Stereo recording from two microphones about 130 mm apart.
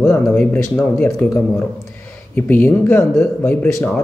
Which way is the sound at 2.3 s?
15° left (ahead or behind).